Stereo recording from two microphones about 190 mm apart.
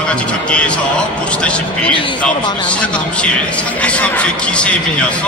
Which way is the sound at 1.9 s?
25° left (ahead or behind).